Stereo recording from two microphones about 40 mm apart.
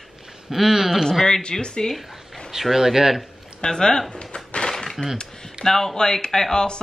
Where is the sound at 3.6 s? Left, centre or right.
Centre.